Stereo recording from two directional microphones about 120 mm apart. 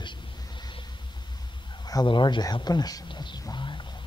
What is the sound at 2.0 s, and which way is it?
A man's voice, 40° left (ahead or behind).